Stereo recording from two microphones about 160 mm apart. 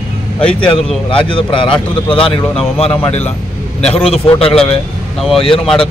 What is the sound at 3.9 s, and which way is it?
Speech, 35° left (ahead or behind).